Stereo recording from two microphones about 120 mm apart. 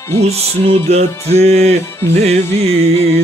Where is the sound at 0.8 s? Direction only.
60° right (ahead or behind).